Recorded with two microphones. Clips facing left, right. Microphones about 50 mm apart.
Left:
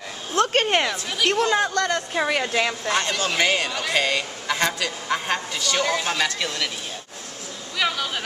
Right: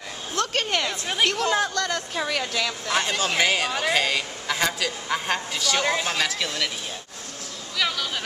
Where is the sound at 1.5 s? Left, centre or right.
Centre.